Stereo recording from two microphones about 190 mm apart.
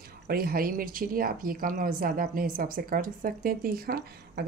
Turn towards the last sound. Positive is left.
turn(degrees=-55)  # may be behind; listen again after turning